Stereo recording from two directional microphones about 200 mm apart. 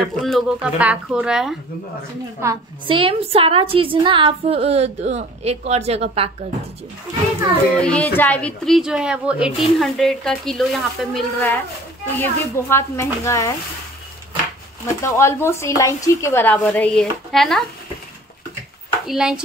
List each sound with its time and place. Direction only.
0.0 s a woman's voice: centre (ahead or behind)
2.4 s a woman's voice: 15° right (ahead or behind)
2.9 s a woman's voice: 25° right (ahead or behind)
7.8 s a woman's voice: 5° left (ahead or behind)
12.2 s speech: 10° left (ahead or behind)
15.0 s speech: 15° left (ahead or behind)
19.0 s a woman's voice: 5° right (ahead or behind)